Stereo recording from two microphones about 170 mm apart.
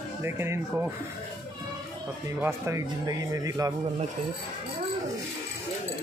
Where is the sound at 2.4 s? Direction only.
15° right (ahead or behind).